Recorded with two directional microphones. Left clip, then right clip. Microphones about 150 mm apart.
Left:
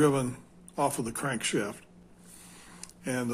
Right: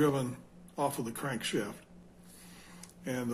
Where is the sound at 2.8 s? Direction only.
45° left (ahead or behind).